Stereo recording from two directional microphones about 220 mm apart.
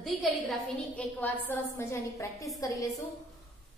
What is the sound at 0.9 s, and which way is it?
A woman's voice, 5° left (ahead or behind).